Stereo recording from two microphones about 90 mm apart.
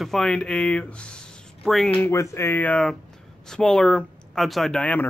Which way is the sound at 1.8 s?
15° left (ahead or behind).